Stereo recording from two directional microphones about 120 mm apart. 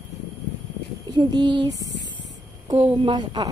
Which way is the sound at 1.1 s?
40° right (ahead or behind).